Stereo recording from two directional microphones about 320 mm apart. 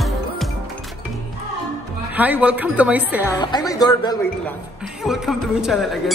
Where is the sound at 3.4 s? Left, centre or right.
Centre.